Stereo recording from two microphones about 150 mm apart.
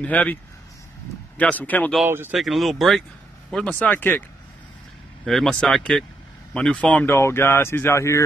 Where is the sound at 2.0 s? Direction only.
15° right (ahead or behind).